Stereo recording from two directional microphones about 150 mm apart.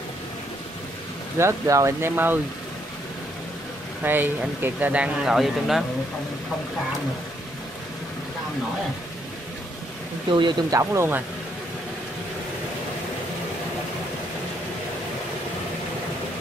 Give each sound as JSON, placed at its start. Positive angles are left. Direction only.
{"t": 1.4, "sound": "speech", "side_deg": -20}
{"t": 4.0, "sound": "speech", "side_deg": -15}
{"t": 10.3, "sound": "speech", "side_deg": -30}
{"t": 10.8, "sound": "speech", "side_deg": -15}